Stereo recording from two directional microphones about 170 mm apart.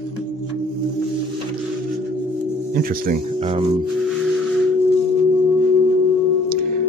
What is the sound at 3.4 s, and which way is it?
Speech, 30° right (ahead or behind).